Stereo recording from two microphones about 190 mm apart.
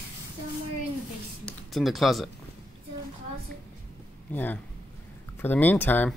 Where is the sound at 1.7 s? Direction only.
Centre (ahead or behind).